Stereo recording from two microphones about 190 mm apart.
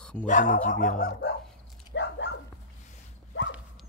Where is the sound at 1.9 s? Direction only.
70° left (ahead or behind).